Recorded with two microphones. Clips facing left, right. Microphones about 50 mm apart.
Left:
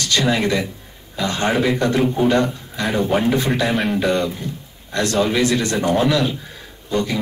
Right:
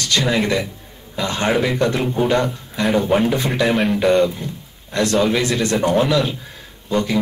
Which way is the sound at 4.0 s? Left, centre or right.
Right.